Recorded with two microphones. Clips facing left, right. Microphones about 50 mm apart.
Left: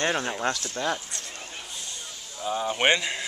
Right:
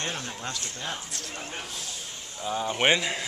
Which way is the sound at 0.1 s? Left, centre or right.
Left.